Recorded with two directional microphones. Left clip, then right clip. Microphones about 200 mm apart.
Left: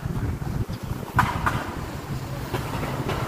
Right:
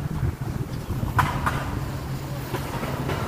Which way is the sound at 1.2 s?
30° right (ahead or behind).